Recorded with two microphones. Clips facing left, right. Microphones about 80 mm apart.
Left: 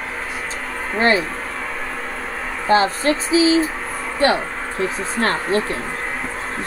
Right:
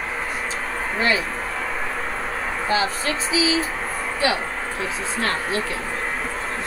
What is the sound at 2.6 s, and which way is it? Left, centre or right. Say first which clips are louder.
Speech: left 8 dB; left.